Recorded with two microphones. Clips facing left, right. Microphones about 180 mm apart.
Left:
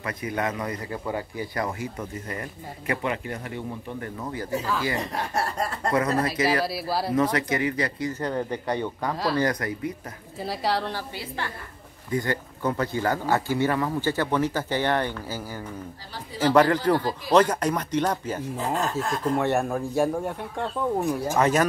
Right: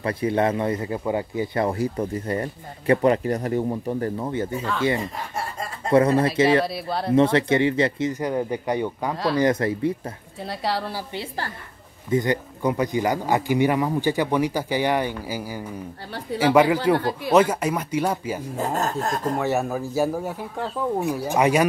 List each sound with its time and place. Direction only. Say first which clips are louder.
0.0 s speech: right 7 dB; 30° right (ahead or behind)
5.1 s chuckle: left 3 dB; 70° left (ahead or behind)
5.9 s speech: right 7 dB; 25° right (ahead or behind)
6.6 s speech: right 1 dB; 5° left (ahead or behind)
7.2 s speech: right 8 dB; 25° right (ahead or behind)
8.2 s speech: right 3 dB; 10° right (ahead or behind)
9.1 s speech: right 2 dB; centre (ahead or behind)
9.4 s speech: right 5 dB; 25° right (ahead or behind)
10.4 s speech: even; centre (ahead or behind)
12.1 s speech: right 5 dB; 20° right (ahead or behind)
18.6 s speech: right 3 dB; 45° right (ahead or behind)
19.3 s speech: left 2 dB; centre (ahead or behind)